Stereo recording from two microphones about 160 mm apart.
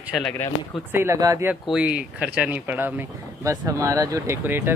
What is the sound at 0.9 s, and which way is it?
Speech, 20° right (ahead or behind).